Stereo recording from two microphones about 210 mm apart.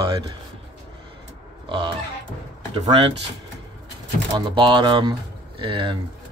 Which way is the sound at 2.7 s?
30° right (ahead or behind).